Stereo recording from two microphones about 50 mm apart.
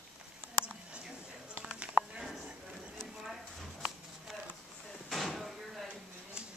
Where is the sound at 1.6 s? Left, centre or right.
Centre.